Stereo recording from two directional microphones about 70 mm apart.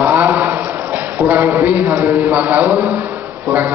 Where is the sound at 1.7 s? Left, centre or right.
Right.